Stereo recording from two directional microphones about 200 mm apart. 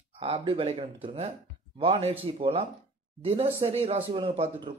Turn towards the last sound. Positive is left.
turn(degrees=-30)  # may be behind; listen again after turning